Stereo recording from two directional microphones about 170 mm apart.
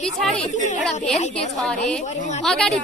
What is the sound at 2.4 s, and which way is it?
Speech, centre (ahead or behind).